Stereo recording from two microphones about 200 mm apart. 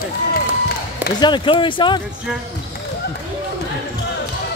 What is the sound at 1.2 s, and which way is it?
Speech, 25° left (ahead or behind).